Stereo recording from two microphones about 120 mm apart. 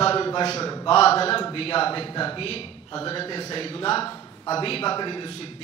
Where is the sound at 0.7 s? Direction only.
50° left (ahead or behind).